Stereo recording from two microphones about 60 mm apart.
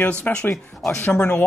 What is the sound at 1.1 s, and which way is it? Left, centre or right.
Speech, left.